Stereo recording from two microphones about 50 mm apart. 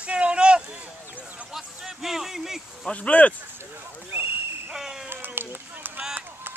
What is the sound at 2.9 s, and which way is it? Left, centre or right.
Speech, left.